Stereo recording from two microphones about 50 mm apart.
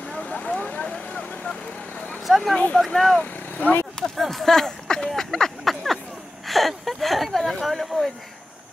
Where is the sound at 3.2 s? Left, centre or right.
Left.